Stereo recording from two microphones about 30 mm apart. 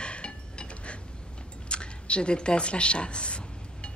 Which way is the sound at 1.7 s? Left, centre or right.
Left.